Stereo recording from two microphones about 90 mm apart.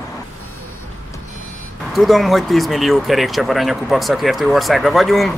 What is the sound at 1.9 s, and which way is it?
Speech, centre (ahead or behind).